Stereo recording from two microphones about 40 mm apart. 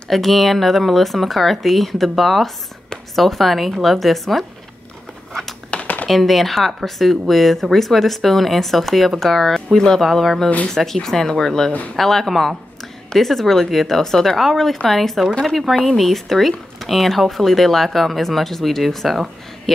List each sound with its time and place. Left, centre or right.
0.1 s speech: centre
5.7 s computer keyboard: left
6.0 s speech: centre
9.8 s speech: centre
10.1 s speech: centre